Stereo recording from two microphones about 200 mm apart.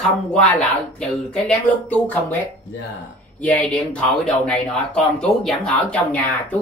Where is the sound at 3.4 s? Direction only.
5° left (ahead or behind).